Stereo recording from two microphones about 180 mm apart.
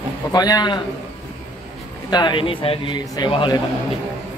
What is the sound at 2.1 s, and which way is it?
A man's voice, 25° left (ahead or behind).